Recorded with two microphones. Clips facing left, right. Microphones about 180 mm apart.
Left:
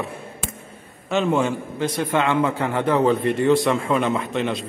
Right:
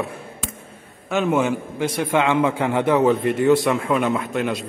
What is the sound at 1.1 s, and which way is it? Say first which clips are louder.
A man's voice: right 1 dB; 5° right (ahead or behind).